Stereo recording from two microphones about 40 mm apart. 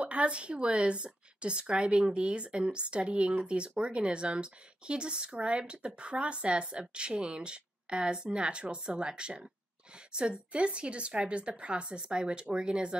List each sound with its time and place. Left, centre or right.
0.0 s speech: right